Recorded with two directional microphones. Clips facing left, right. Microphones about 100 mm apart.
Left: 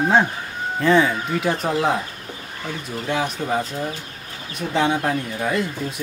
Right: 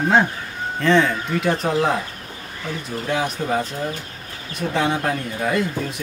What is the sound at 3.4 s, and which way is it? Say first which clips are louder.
Speech: right 1 dB; 15° left (ahead or behind).